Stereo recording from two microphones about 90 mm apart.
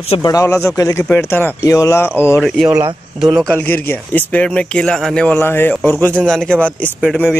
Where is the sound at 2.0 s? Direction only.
25° left (ahead or behind).